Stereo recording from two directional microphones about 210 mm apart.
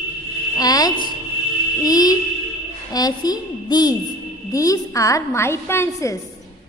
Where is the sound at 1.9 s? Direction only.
20° left (ahead or behind).